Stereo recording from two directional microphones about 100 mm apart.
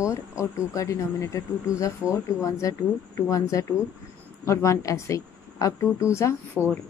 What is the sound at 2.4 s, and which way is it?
Speech, 30° left (ahead or behind).